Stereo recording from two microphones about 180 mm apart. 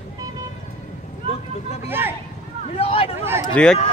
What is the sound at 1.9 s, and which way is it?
Speech, 10° right (ahead or behind).